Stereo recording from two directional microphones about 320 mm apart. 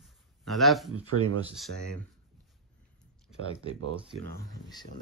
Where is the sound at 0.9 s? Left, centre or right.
Right.